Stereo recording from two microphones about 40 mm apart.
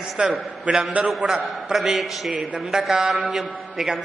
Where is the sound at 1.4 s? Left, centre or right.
Centre.